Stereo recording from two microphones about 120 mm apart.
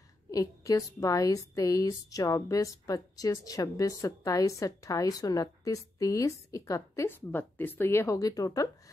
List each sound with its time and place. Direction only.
0.3 s a woman's voice: 30° left (ahead or behind)